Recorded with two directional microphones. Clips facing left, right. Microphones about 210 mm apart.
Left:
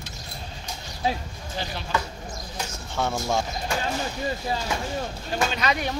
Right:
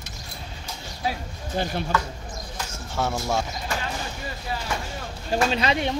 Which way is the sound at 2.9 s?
5° right (ahead or behind).